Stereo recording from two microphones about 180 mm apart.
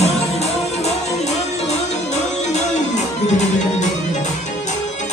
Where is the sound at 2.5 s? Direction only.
40° left (ahead or behind).